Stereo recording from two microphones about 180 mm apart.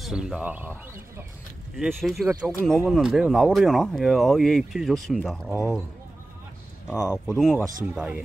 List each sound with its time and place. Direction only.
0.0 s speech: centre (ahead or behind)
1.8 s speech: centre (ahead or behind)
7.1 s speech: centre (ahead or behind)